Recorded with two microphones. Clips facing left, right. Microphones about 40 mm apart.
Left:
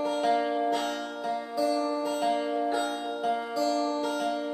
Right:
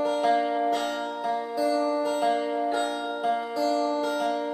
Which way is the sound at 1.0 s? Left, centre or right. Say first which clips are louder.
Right 4 dB; centre.